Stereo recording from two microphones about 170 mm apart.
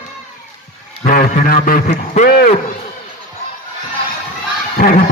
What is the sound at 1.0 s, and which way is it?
A man's voice, 55° left (ahead or behind).